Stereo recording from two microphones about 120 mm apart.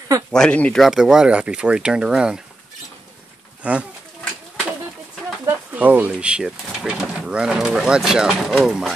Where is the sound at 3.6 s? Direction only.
10° right (ahead or behind).